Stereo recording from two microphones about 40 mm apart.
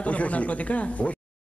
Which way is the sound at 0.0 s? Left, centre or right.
Left.